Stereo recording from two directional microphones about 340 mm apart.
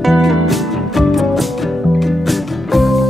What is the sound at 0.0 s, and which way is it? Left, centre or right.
Music, centre.